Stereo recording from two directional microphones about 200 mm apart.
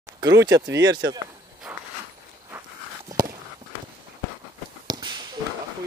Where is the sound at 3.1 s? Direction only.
15° right (ahead or behind).